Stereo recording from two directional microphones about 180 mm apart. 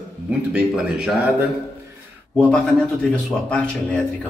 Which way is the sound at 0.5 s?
5° right (ahead or behind).